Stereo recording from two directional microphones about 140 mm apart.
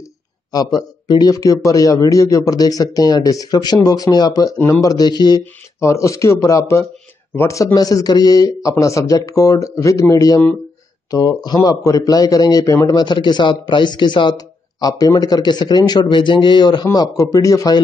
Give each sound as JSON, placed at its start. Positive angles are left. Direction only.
{"t": 0.5, "sound": "a man's voice", "side_deg": 25}